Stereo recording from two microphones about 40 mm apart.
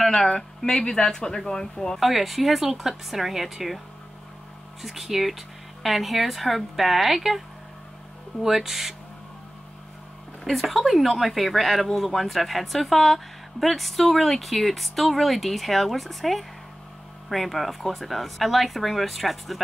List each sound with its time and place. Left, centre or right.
0.0 s speech: centre
2.0 s speech: centre
4.8 s speech: centre
10.4 s speech: centre